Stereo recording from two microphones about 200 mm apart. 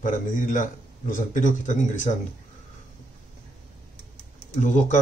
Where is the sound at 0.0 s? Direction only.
40° left (ahead or behind).